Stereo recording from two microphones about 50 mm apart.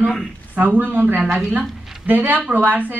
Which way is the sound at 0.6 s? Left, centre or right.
Right.